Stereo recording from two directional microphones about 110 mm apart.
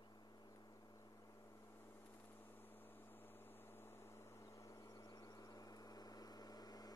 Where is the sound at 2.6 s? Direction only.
20° left (ahead or behind).